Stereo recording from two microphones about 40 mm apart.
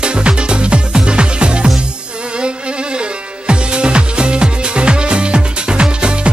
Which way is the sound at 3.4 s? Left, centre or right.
Right.